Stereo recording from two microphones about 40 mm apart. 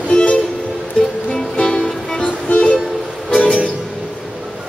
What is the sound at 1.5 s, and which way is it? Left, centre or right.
Music, left.